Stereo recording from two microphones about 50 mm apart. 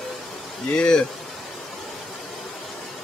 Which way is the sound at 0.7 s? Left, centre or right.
Centre.